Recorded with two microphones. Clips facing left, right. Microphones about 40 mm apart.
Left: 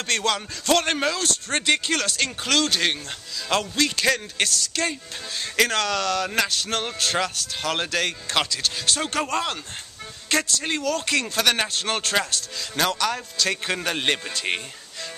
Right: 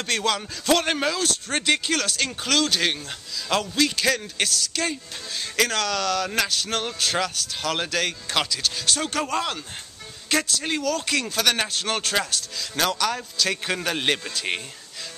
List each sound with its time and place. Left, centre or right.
0.0 s a man's voice: centre